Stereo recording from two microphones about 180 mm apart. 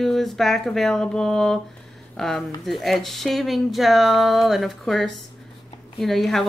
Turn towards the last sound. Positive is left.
turn(degrees=0)  # may be behind; listen again after turning